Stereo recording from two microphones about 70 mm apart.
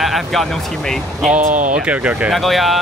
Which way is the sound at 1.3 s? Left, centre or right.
Centre.